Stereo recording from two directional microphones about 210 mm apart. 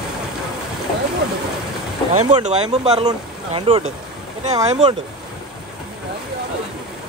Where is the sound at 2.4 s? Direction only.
30° right (ahead or behind).